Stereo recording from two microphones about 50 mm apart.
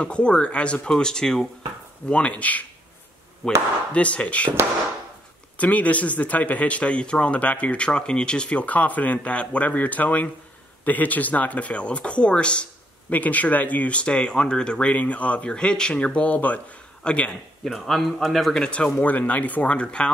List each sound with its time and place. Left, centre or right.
0.0 s speech: left
2.0 s speech: left
3.4 s speech: centre
3.9 s speech: left
5.6 s speech: left
17.0 s a man's voice: left
17.6 s a man's voice: centre
18.6 s speech: centre
18.9 s speech: left